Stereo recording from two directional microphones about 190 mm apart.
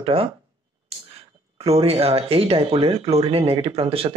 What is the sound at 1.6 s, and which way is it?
Speech, 30° right (ahead or behind).